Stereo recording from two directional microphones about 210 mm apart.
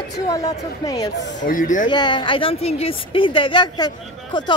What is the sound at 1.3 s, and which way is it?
Speech, 40° left (ahead or behind).